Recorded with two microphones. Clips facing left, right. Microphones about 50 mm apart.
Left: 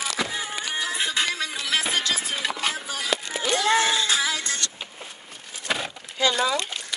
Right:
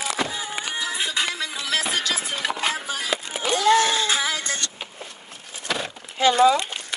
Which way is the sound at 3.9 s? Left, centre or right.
Right.